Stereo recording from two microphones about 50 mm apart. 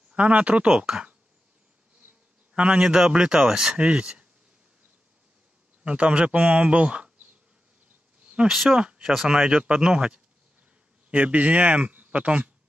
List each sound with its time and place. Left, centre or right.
0.1 s speech: right
2.5 s a man's voice: right
2.8 s speech: centre
5.9 s speech: right
8.2 s insect: right
8.5 s speech: centre
8.7 s speech: centre
11.1 s speech: right